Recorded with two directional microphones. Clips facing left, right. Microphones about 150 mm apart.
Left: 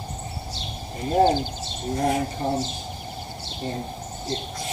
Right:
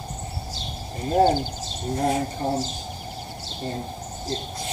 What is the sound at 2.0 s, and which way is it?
Speech, 40° right (ahead or behind).